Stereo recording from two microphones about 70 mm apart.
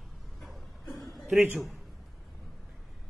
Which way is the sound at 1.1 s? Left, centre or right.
Centre.